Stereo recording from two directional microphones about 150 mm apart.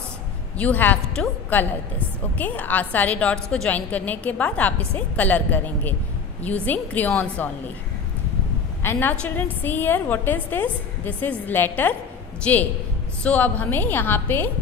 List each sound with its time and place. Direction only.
0.6 s a woman's voice: 10° left (ahead or behind)
8.8 s a woman's voice: 15° left (ahead or behind)